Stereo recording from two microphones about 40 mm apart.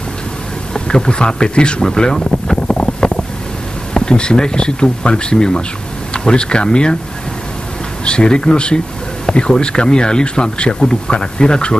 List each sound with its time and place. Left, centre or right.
0.7 s speech: left
2.1 s a sound: centre
2.7 s wind noise: centre
3.9 s speech: left
8.0 s speech: left